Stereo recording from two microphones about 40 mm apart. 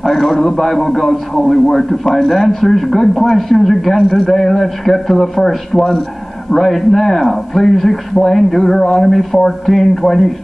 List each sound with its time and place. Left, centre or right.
0.0 s a man's voice: centre